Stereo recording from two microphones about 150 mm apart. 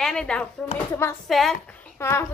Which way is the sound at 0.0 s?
5° left (ahead or behind).